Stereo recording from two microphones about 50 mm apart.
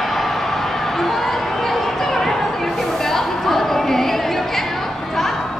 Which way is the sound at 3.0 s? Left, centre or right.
Centre.